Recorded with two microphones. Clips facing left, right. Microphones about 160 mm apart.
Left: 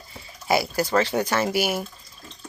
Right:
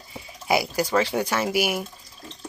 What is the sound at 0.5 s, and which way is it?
Speech, 10° right (ahead or behind).